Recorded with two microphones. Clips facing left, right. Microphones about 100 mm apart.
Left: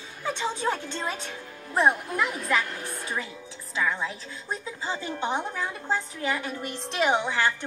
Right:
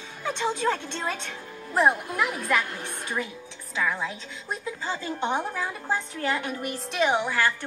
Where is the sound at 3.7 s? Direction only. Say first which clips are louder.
Even; centre (ahead or behind).